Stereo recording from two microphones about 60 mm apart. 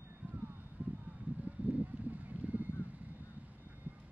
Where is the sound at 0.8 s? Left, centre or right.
Right.